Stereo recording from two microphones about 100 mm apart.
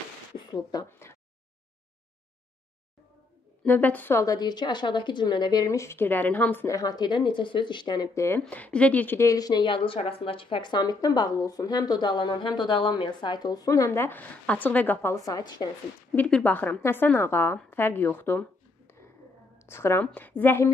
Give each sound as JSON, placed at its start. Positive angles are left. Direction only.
{"t": 0.5, "sound": "speech", "side_deg": 40}
{"t": 0.8, "sound": "a sound", "side_deg": 25}
{"t": 3.6, "sound": "speech", "side_deg": 15}
{"t": 4.2, "sound": "a woman's voice", "side_deg": 40}
{"t": 6.7, "sound": "speech", "side_deg": 40}
{"t": 8.1, "sound": "a woman's voice", "side_deg": 30}
{"t": 8.4, "sound": "speech", "side_deg": 15}
{"t": 9.3, "sound": "a woman's voice", "side_deg": 40}
{"t": 9.7, "sound": "speech", "side_deg": 65}
{"t": 13.7, "sound": "a woman's voice", "side_deg": 30}
{"t": 15.1, "sound": "a woman's voice", "side_deg": 40}
{"t": 16.2, "sound": "a woman's voice", "side_deg": 10}
{"t": 19.7, "sound": "a woman's voice", "side_deg": 25}